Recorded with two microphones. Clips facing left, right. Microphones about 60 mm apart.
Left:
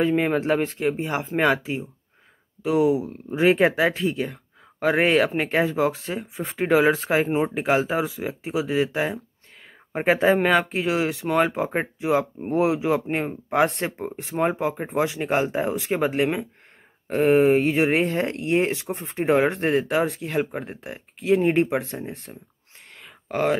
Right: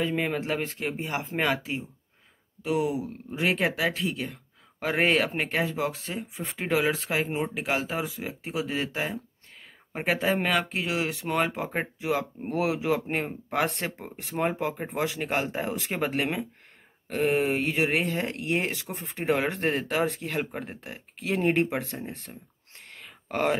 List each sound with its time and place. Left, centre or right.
0.2 s speech: left
0.7 s speech: centre
3.9 s speech: centre; by 7.4 s left
7.6 s speech: centre
9.9 s speech: left
10.3 s speech: centre
19.8 s speech: centre
21.5 s speech: left
23.0 s a sound: centre